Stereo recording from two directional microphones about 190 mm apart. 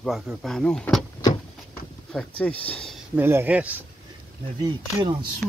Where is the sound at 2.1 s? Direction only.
5° left (ahead or behind).